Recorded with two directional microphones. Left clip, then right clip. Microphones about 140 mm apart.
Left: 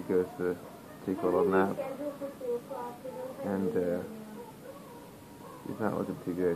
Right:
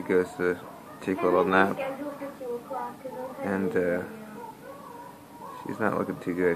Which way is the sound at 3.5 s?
40° right (ahead or behind).